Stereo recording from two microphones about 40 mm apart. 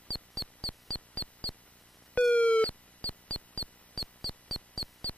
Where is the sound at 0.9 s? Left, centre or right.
Left.